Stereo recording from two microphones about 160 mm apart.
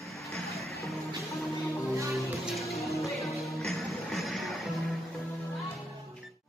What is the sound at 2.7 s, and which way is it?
Music, 20° left (ahead or behind).